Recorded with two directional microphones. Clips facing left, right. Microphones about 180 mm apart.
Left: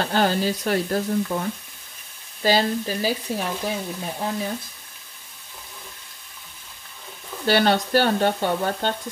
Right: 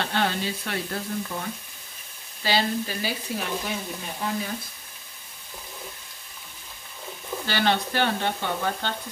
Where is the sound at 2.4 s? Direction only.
40° left (ahead or behind).